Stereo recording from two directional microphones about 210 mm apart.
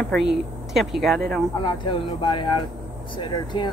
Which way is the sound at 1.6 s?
20° left (ahead or behind).